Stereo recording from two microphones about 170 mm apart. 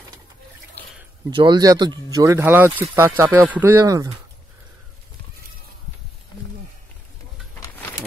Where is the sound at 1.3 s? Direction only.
25° right (ahead or behind).